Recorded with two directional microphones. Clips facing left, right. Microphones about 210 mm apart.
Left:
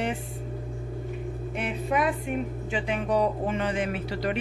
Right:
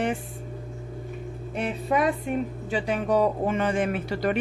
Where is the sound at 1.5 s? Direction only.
40° right (ahead or behind).